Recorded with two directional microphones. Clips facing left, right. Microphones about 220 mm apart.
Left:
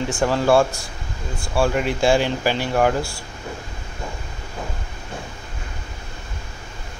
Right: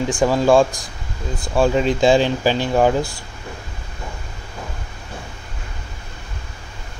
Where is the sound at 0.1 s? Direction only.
15° right (ahead or behind).